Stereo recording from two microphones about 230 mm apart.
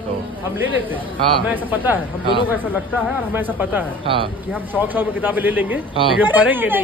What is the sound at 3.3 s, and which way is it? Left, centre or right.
Speech, centre.